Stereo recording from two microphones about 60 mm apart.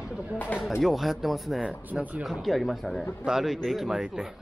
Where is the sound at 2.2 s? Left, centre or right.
Centre.